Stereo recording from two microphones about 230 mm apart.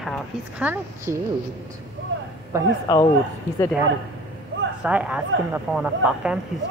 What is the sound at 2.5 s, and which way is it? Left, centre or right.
Speech, centre.